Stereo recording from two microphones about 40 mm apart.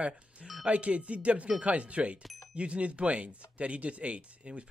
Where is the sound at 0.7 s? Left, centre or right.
Right.